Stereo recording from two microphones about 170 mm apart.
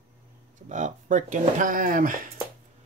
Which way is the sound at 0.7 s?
50° right (ahead or behind).